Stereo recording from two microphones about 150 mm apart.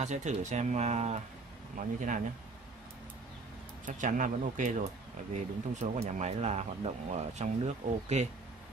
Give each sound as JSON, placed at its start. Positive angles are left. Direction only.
{"t": 0.0, "sound": "speech", "side_deg": -50}
{"t": 1.8, "sound": "speech", "side_deg": -60}
{"t": 3.8, "sound": "speech", "side_deg": -60}